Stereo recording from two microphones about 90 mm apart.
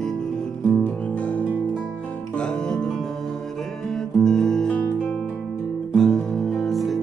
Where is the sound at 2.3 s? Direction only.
10° left (ahead or behind).